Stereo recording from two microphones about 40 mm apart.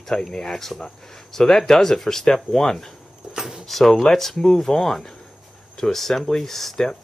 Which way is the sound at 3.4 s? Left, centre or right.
Centre.